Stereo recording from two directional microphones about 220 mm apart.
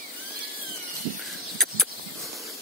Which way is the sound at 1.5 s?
Centre (ahead or behind).